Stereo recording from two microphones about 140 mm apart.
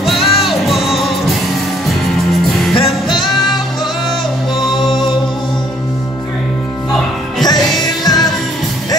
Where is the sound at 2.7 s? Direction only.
35° left (ahead or behind).